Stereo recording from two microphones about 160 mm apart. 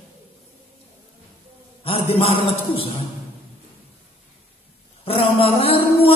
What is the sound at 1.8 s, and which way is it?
Speech, 35° left (ahead or behind).